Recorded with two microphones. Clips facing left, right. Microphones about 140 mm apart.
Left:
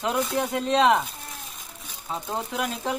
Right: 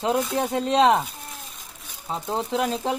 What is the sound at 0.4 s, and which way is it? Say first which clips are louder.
Speech: right 1 dB; 30° right (ahead or behind).